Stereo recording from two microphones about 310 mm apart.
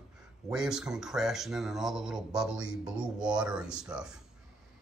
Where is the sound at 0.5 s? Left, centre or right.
Centre.